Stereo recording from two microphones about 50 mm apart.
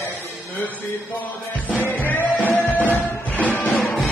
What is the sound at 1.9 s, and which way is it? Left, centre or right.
Music, left.